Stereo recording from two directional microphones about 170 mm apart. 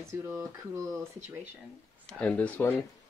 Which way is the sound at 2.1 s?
5° left (ahead or behind).